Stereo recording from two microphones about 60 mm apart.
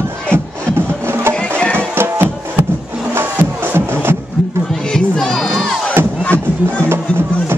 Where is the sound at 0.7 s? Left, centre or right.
Right.